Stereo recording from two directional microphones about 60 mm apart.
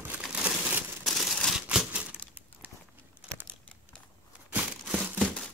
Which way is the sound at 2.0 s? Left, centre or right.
Right.